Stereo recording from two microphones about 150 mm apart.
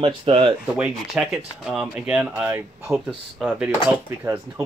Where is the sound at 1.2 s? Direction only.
Centre (ahead or behind).